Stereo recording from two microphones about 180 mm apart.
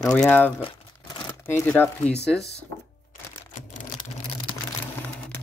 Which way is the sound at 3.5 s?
45° left (ahead or behind).